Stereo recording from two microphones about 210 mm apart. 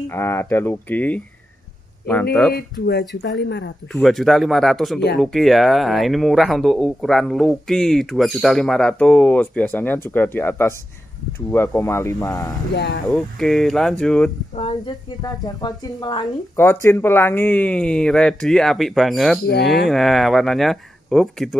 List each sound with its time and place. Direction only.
0.1 s a woman's voice: 10° left (ahead or behind)
2.5 s speech: 45° left (ahead or behind)
3.9 s a woman's voice: centre (ahead or behind); by 12.5 s 15° left (ahead or behind)
12.7 s speech: 55° left (ahead or behind)
13.1 s speech: centre (ahead or behind)
14.5 s a woman's voice: 30° left (ahead or behind); by 21.5 s centre (ahead or behind)